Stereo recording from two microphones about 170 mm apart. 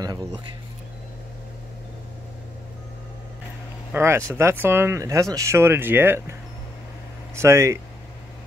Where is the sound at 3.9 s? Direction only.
15° right (ahead or behind).